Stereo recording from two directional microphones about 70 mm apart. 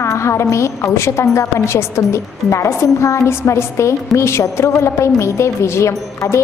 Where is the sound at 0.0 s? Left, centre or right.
Left.